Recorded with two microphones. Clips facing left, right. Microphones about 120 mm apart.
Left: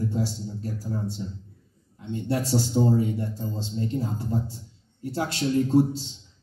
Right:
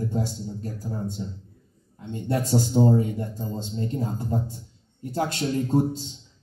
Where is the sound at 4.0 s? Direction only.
45° right (ahead or behind).